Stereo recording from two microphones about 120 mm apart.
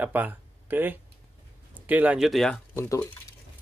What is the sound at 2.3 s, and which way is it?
Speech, centre (ahead or behind).